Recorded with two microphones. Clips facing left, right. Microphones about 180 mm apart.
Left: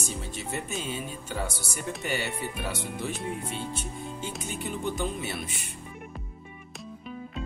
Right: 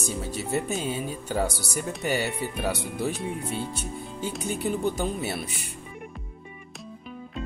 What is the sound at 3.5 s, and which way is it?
Music, 40° right (ahead or behind).